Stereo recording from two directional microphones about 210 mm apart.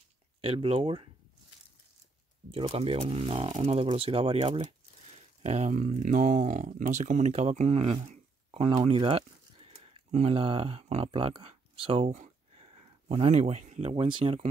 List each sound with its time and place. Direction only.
0.4 s speech: 25° right (ahead or behind)
2.5 s speech: 25° right (ahead or behind)